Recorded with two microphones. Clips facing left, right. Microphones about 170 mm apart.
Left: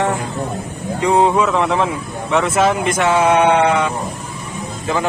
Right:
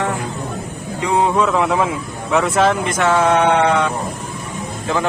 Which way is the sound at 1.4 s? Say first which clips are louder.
Even; centre (ahead or behind).